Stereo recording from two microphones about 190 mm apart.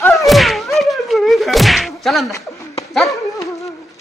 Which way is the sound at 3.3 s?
15° left (ahead or behind).